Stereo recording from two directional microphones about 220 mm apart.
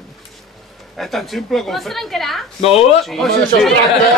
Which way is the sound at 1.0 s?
Centre (ahead or behind).